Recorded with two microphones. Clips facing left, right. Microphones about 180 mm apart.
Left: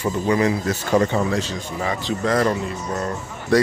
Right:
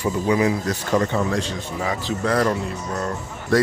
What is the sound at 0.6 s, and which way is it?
Speech, 5° left (ahead or behind).